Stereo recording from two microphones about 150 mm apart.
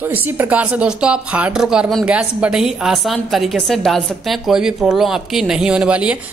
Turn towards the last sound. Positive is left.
turn(degrees=-10)  # may be behind; listen again after turning